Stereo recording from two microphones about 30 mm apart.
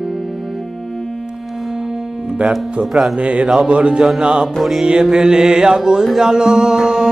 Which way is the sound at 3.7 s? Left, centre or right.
Right.